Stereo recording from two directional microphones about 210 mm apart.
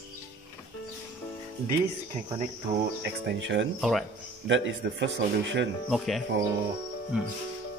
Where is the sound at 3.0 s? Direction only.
55° right (ahead or behind).